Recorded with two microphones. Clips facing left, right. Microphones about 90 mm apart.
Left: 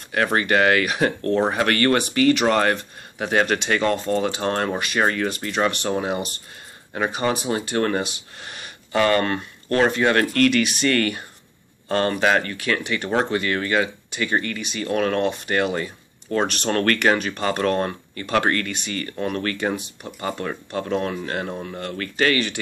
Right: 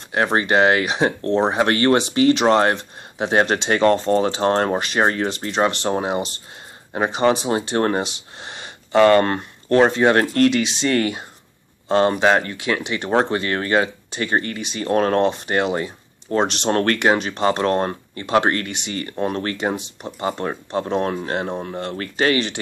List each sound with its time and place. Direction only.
0.1 s speech: 30° right (ahead or behind)